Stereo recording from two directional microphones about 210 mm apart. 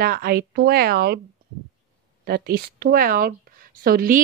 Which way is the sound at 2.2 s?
50° right (ahead or behind).